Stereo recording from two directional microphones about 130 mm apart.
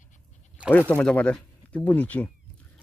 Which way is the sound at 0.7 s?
10° left (ahead or behind).